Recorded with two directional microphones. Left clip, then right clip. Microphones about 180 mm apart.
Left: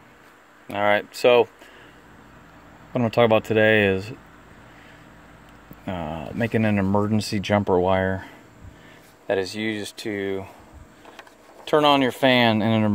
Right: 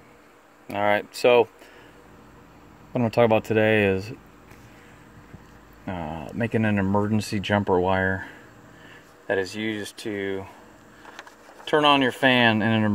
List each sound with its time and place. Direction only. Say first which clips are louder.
0.7 s speech: left 2 dB; centre (ahead or behind)
2.9 s speech: left 1 dB; centre (ahead or behind)
5.9 s speech: left 2 dB; 5° left (ahead or behind)
11.6 s speech: left 1 dB; 10° left (ahead or behind)